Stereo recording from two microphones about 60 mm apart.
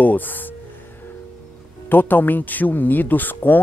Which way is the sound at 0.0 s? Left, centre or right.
Left.